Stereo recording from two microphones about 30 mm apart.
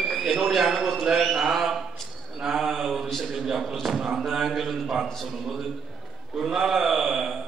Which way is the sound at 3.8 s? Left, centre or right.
Centre.